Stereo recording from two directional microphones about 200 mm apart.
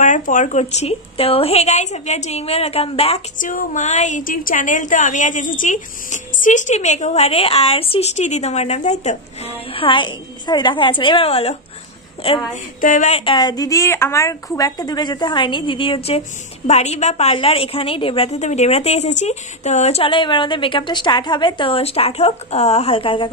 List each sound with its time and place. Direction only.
0.0 s a woman's voice: 40° left (ahead or behind)
12.8 s a woman's voice: 40° left (ahead or behind)